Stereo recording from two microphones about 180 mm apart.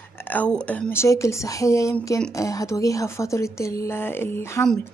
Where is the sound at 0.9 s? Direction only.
15° left (ahead or behind).